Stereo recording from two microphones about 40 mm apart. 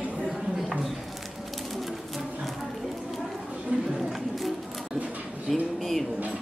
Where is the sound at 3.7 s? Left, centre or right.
Right.